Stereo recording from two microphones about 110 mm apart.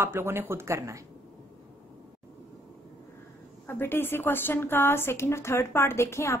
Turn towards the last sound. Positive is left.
turn(degrees=25)  # may be behind; listen again after turning